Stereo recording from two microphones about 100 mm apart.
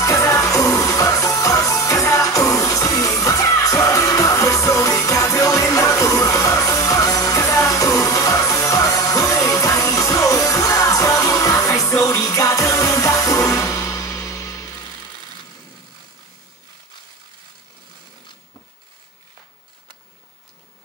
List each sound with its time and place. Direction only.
0.0 s music: 30° left (ahead or behind)